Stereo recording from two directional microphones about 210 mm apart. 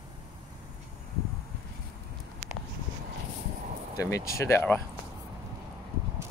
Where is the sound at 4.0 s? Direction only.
15° left (ahead or behind).